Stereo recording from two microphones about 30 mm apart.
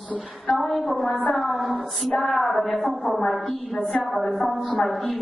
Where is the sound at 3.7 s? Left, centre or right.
Left.